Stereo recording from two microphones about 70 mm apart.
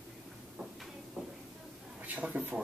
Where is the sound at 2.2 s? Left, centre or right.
Centre.